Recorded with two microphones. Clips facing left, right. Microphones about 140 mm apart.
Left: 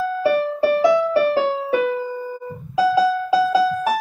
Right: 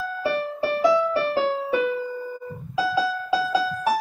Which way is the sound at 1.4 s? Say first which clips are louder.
Left 3 dB; 50° left (ahead or behind).